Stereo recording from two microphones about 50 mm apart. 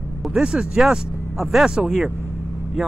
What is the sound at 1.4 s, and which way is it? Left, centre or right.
Speech, centre.